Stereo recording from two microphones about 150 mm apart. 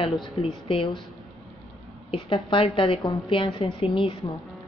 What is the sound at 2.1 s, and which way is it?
A woman's voice, 35° left (ahead or behind).